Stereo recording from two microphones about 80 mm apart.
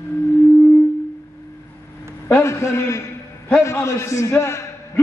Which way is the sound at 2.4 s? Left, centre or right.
Left.